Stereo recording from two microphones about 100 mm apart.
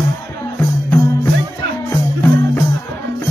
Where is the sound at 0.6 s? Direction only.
25° left (ahead or behind).